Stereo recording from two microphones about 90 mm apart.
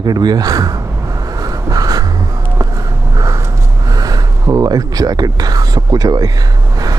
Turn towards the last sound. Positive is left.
turn(degrees=-45)  # may be behind; listen again after turning